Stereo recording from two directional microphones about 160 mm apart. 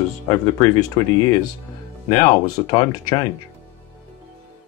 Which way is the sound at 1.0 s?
25° left (ahead or behind).